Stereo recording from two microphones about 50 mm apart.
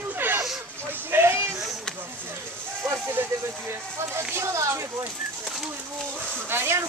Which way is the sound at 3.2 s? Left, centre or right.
Right.